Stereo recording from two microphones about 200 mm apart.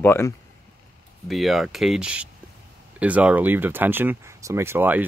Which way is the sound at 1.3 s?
Centre (ahead or behind).